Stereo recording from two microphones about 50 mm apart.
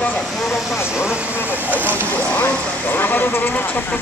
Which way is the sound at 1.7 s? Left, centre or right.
Left.